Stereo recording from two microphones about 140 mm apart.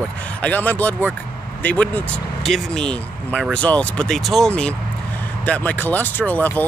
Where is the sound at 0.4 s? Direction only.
10° left (ahead or behind).